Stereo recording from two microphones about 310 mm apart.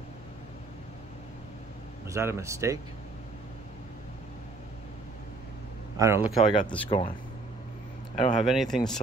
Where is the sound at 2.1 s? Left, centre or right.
Centre.